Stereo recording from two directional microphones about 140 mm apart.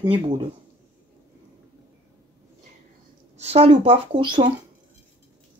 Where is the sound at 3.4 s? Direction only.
50° right (ahead or behind).